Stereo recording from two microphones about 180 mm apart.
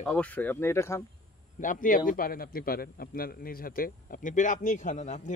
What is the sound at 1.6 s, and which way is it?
A man's voice, 50° left (ahead or behind).